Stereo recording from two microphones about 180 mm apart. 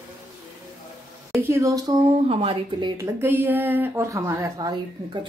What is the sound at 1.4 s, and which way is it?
Speech, 15° right (ahead or behind).